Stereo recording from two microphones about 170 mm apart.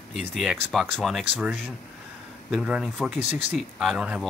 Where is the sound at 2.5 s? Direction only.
5° right (ahead or behind).